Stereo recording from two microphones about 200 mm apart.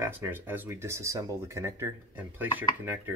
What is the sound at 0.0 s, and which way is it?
Speech, 10° right (ahead or behind).